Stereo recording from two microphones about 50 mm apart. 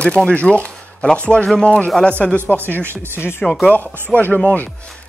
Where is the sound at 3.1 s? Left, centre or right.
Left.